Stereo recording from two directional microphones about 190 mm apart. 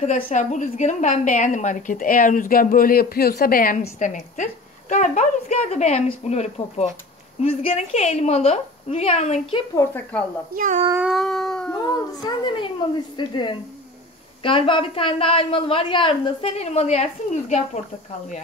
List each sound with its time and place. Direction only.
0.0 s a woman's voice: 40° left (ahead or behind)
9.8 s speech: 10° left (ahead or behind)
10.5 s a child's voice: 45° right (ahead or behind)
10.9 s cat: 5° right (ahead or behind)
12.2 s a woman's voice: 20° left (ahead or behind)